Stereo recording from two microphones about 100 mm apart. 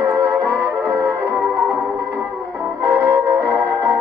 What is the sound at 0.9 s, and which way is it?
Music, 30° right (ahead or behind).